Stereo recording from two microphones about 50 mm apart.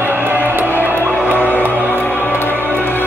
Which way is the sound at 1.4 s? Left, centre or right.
Left.